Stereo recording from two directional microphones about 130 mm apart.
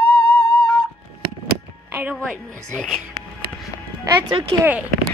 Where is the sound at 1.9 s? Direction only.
15° right (ahead or behind).